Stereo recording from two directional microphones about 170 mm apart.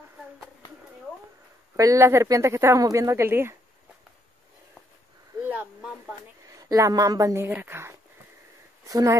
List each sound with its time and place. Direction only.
1.8 s speech: 20° right (ahead or behind)
5.4 s a sound: 10° right (ahead or behind)
6.5 s a woman's voice: 20° right (ahead or behind)